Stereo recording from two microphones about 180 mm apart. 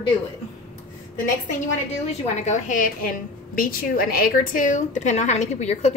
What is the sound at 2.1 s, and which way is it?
A woman's voice, 40° left (ahead or behind).